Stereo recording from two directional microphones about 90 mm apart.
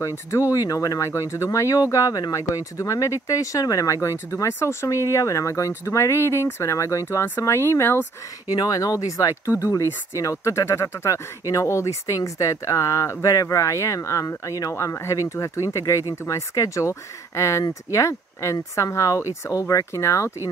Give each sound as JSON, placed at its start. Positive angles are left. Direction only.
{"t": 0.0, "sound": "speech", "side_deg": 35}
{"t": 8.5, "sound": "speech", "side_deg": 40}